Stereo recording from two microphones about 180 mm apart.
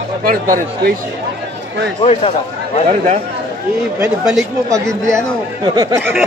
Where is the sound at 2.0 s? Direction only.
35° left (ahead or behind).